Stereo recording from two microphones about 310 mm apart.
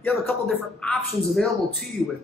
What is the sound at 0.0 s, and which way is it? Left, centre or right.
Speech, centre.